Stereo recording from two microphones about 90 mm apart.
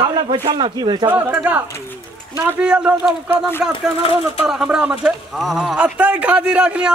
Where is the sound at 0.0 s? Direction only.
60° right (ahead or behind).